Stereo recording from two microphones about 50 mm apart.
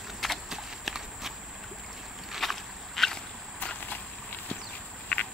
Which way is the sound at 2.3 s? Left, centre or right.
Centre.